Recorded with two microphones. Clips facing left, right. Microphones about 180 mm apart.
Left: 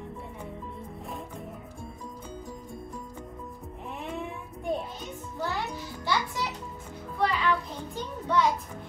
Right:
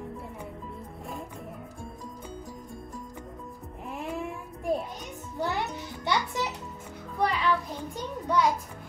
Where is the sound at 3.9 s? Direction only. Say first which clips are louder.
Right 2 dB; centre (ahead or behind).